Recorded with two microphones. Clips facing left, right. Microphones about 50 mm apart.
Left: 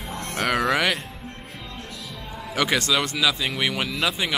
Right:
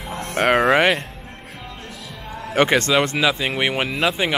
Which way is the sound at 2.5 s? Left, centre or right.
Right.